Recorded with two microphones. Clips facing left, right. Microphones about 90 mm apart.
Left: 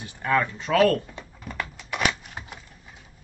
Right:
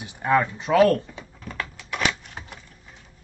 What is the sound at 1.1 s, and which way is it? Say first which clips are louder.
Typewriter: even; 5° left (ahead or behind).